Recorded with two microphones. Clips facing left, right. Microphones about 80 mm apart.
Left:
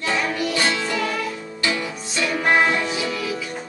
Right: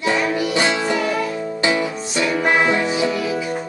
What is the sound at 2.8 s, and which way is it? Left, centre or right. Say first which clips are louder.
Music: right 5 dB; right.